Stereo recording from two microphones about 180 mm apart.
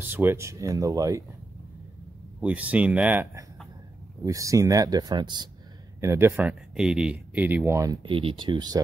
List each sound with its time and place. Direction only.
0.0 s speech: 10° right (ahead or behind)
2.4 s speech: 10° right (ahead or behind)
8.0 s speech: 30° right (ahead or behind)